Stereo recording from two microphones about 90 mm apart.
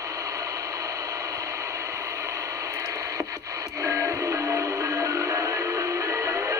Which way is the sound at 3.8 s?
35° right (ahead or behind).